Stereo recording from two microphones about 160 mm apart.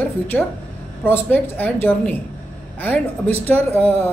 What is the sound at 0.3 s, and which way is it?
Speech, 10° left (ahead or behind).